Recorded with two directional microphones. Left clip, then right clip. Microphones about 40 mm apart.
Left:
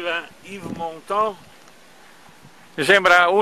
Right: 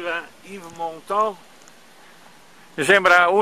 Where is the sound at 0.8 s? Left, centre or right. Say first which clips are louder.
Even; right.